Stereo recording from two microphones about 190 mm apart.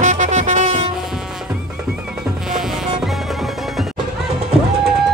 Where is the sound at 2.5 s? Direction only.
Centre (ahead or behind).